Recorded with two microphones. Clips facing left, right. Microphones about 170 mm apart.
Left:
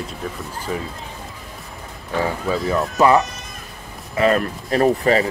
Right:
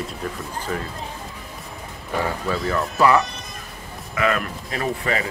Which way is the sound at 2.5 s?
20° left (ahead or behind).